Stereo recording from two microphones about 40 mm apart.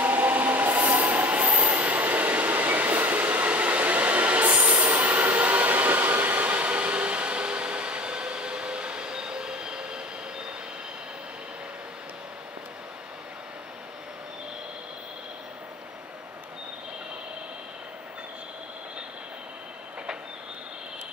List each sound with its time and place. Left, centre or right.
0.0 s train: right